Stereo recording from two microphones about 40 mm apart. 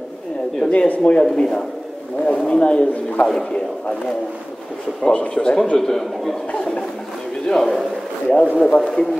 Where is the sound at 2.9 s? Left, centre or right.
Left.